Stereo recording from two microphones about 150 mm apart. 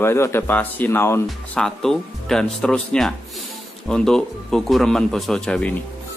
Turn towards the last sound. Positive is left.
turn(degrees=5)  # may be behind; listen again after turning